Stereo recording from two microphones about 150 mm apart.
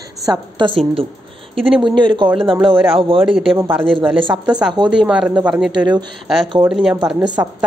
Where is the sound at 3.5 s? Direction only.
15° right (ahead or behind).